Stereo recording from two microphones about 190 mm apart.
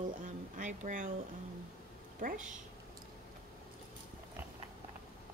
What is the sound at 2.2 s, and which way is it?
Speech, 40° right (ahead or behind).